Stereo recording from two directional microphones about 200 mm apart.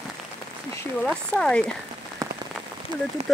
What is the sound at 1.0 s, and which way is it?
Speech, 5° left (ahead or behind).